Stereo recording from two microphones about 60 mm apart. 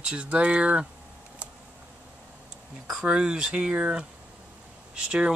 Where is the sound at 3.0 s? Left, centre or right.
Centre.